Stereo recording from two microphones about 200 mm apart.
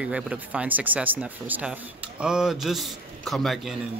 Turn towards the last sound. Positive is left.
turn(degrees=0)  # may be behind; listen again after turning